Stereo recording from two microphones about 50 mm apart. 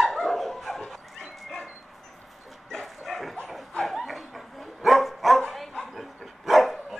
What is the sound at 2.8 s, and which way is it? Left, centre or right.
Bow-wow, centre.